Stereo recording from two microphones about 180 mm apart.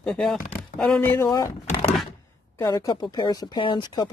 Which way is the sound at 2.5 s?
20° left (ahead or behind).